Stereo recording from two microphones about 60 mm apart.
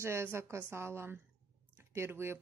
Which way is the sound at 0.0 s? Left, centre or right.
Right.